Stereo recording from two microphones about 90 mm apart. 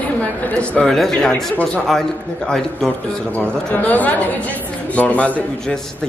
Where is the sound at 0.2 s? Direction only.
15° left (ahead or behind).